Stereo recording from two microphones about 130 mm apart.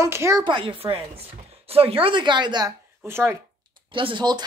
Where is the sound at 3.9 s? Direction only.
40° right (ahead or behind).